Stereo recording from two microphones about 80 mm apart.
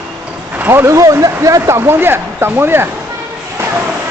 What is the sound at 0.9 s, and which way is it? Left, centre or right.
Speech, right.